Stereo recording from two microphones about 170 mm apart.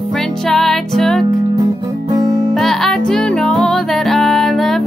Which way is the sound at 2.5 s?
5° left (ahead or behind).